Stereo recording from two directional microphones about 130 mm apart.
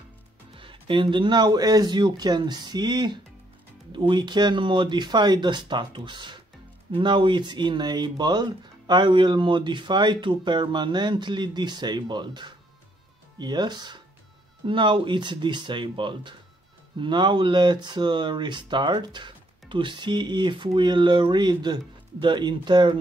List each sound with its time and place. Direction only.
0.6 s speech: 40° right (ahead or behind)